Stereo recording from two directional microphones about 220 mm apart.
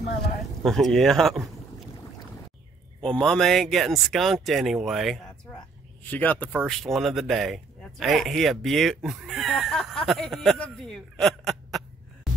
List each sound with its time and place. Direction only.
0.7 s speech: centre (ahead or behind)
3.0 s speech: 5° left (ahead or behind)